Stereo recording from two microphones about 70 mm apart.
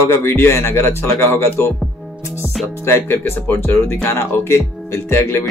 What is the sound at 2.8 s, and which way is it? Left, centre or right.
Speech, left.